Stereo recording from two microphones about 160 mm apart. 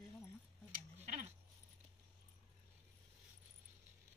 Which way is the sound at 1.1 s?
45° right (ahead or behind).